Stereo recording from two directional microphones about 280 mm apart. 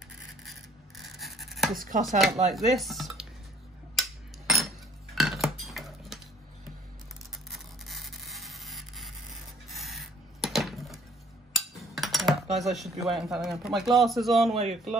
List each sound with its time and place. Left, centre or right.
0.5 s a sound: centre
2.0 s a man's voice: centre
3.9 s cutlery: centre
7.5 s a sound: centre
12.5 s a man's voice: centre
14.5 s speech: right